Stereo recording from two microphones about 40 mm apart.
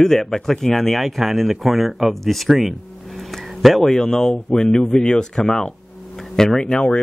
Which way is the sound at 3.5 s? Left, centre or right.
Centre.